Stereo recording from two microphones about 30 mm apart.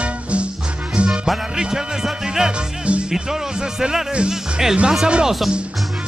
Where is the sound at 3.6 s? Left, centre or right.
Right.